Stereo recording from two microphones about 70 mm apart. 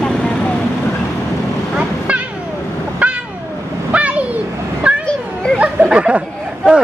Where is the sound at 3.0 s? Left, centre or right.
Centre.